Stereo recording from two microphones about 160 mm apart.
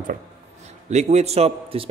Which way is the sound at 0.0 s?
50° right (ahead or behind).